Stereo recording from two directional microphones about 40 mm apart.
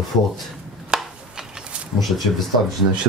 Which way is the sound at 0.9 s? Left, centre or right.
Centre.